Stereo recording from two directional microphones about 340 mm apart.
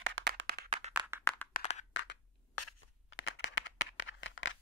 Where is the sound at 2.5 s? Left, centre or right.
Left.